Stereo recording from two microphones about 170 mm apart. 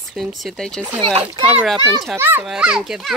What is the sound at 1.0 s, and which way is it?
Speech, 35° right (ahead or behind).